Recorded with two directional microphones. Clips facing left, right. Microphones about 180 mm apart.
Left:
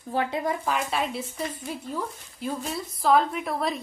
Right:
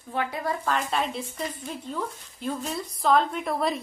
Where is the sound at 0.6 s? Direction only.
5° left (ahead or behind).